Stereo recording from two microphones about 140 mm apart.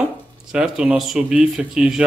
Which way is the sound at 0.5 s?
5° right (ahead or behind).